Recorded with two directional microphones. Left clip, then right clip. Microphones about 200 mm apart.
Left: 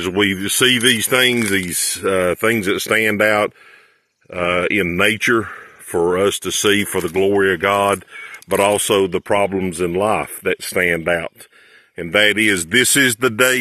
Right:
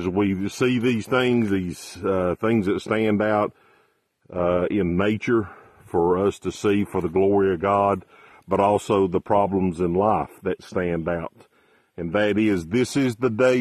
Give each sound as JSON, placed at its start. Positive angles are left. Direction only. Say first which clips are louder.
{"t": 0.0, "sound": "speech", "louder": "left 6 dB", "side_deg": 10}
{"t": 2.0, "sound": "speech", "louder": "left 6 dB", "side_deg": 5}
{"t": 5.4, "sound": "speech", "louder": "left 5 dB", "side_deg": 15}
{"t": 6.2, "sound": "speech", "louder": "left 6 dB", "side_deg": 5}